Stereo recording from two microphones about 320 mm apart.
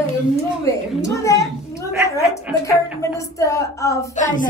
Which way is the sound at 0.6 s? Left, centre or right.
Centre.